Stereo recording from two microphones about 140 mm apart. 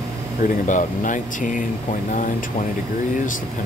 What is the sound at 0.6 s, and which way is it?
Speech, 65° left (ahead or behind).